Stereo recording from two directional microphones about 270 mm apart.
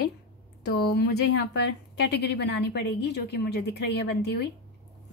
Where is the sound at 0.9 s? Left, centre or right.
Left.